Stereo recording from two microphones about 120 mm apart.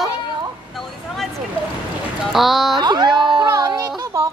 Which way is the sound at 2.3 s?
Centre (ahead or behind).